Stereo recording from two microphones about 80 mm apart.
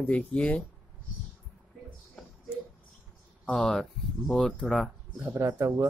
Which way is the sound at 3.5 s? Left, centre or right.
Centre.